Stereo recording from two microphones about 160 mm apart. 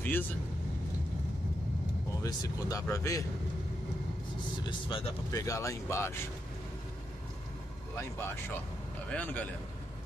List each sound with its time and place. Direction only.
2.2 s speech: 20° left (ahead or behind)
4.6 s speech: 30° left (ahead or behind)
7.9 s a man's voice: 15° left (ahead or behind)